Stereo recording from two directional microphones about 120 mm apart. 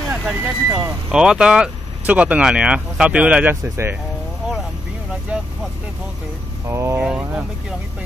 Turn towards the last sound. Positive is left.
turn(degrees=-10)  # may be behind; listen again after turning